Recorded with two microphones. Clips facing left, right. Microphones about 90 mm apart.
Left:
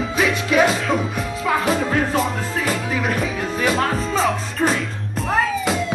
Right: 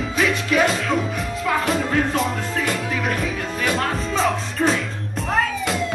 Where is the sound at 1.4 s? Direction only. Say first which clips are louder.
Left 2 dB; 5° left (ahead or behind).